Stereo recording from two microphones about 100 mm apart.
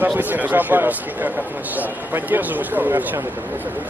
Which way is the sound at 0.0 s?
20° right (ahead or behind).